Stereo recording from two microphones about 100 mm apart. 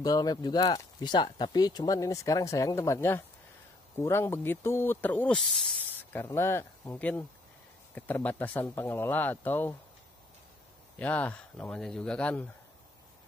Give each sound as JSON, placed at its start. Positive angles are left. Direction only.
{"t": 0.0, "sound": "speech", "side_deg": 40}
{"t": 6.1, "sound": "speech", "side_deg": 25}
{"t": 7.0, "sound": "speech", "side_deg": 15}
{"t": 11.0, "sound": "speech", "side_deg": 15}